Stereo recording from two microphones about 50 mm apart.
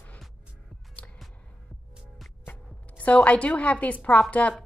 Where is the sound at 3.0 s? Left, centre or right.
Left.